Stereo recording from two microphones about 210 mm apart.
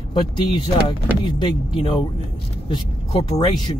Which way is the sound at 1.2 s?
20° left (ahead or behind).